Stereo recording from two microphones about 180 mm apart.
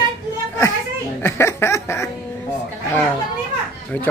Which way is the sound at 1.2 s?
15° left (ahead or behind).